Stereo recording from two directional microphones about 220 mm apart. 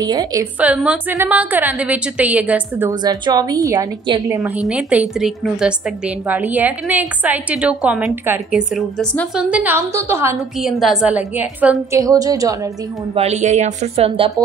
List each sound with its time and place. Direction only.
0.0 s a woman's voice: 15° right (ahead or behind)
2.9 s a woman's voice: 20° right (ahead or behind)
4.4 s a woman's voice: 5° right (ahead or behind)
10.6 s a woman's voice: centre (ahead or behind)
13.1 s speech: 30° right (ahead or behind)